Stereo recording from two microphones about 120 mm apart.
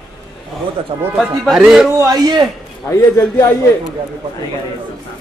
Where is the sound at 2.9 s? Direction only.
30° left (ahead or behind).